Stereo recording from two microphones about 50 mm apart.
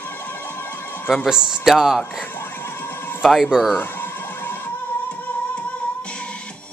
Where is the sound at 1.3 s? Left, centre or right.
Centre.